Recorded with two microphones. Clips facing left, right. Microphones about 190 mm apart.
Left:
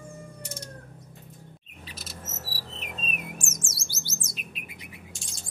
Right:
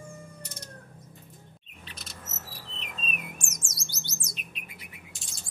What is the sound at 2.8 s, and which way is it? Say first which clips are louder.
Bird: left 2 dB; 40° left (ahead or behind).